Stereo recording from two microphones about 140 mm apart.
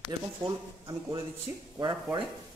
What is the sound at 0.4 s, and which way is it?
Speech, 35° right (ahead or behind).